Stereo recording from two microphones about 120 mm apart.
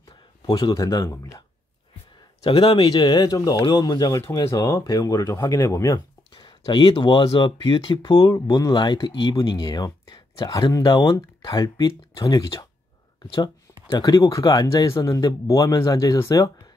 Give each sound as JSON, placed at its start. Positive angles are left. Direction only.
{"t": 0.5, "sound": "speech", "side_deg": 30}
{"t": 2.4, "sound": "speech", "side_deg": 45}
{"t": 2.8, "sound": "speech", "side_deg": 30}
{"t": 6.3, "sound": "speech", "side_deg": 40}